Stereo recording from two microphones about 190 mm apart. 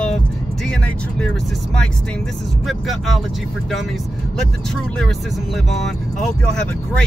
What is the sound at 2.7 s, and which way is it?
Speech, centre (ahead or behind).